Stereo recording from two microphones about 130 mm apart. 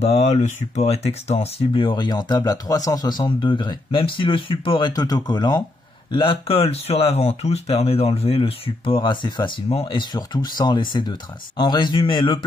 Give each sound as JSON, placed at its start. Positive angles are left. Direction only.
{"t": 0.0, "sound": "speech", "side_deg": 50}
{"t": 1.7, "sound": "speech", "side_deg": 40}
{"t": 6.1, "sound": "speech", "side_deg": 45}